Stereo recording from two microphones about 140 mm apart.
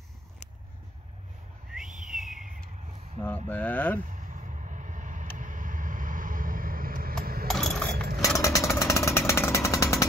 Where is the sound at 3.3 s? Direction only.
10° left (ahead or behind).